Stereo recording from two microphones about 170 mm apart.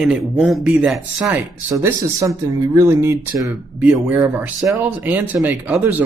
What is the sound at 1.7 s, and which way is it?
Speech, 15° right (ahead or behind).